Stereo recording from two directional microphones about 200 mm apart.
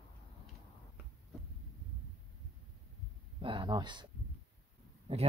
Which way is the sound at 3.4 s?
25° right (ahead or behind).